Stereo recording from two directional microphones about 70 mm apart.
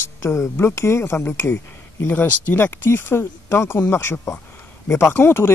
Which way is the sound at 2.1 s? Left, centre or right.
Left.